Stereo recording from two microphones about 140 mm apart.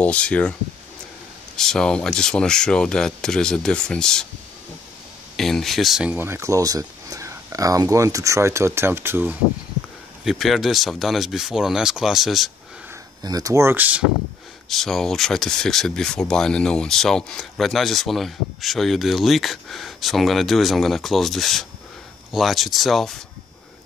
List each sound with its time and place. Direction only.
0.0 s speech: 10° left (ahead or behind)
1.6 s speech: 5° left (ahead or behind)
5.3 s speech: centre (ahead or behind)
6.1 s speech: 15° right (ahead or behind)
10.2 s speech: centre (ahead or behind)
13.2 s speech: 25° right (ahead or behind)
14.7 s speech: centre (ahead or behind)